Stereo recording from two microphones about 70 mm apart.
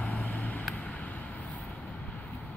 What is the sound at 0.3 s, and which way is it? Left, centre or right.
Vehicle, left.